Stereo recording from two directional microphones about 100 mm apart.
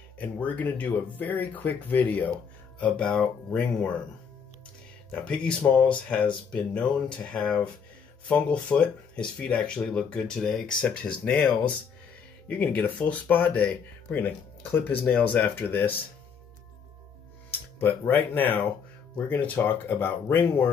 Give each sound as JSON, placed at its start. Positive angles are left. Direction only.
{"t": 0.2, "sound": "speech", "side_deg": 15}
{"t": 5.1, "sound": "speech", "side_deg": 15}
{"t": 17.5, "sound": "speech", "side_deg": 20}